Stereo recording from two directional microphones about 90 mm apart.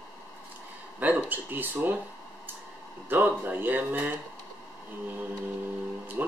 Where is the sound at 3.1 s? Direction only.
20° right (ahead or behind).